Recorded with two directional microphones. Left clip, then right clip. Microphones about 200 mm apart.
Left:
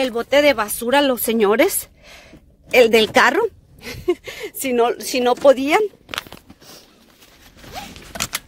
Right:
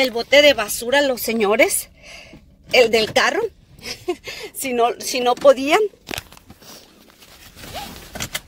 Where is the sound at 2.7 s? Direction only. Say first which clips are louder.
Left 2 dB; 15° left (ahead or behind).